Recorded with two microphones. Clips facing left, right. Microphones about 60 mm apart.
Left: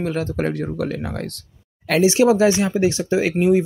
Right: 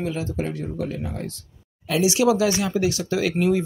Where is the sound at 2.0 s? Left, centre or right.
Left.